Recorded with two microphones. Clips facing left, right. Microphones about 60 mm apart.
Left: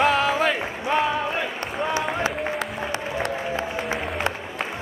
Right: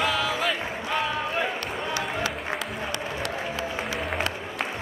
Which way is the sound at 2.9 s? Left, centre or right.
Left.